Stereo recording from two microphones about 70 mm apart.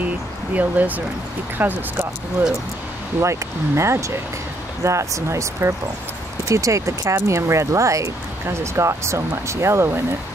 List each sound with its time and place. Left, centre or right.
0.6 s speech: right
3.2 s speech: right